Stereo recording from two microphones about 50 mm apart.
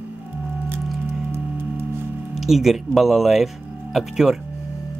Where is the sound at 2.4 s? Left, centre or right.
Centre.